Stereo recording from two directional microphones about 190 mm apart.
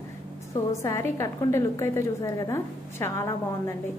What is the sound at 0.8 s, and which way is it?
A woman's voice, 15° left (ahead or behind).